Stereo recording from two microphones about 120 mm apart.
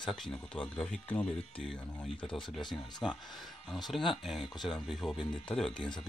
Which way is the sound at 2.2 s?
45° left (ahead or behind).